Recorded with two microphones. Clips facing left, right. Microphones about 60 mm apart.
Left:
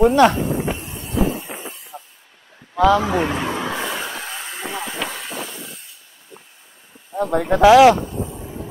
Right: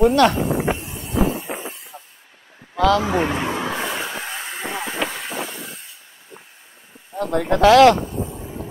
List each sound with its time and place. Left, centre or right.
0.0 s speech: centre
0.5 s a sound: right
1.0 s a sound: centre
1.4 s a sound: centre
1.9 s vehicle: centre
2.8 s speech: centre
3.1 s vehicle: centre
7.2 s speech: centre
8.1 s vehicle: centre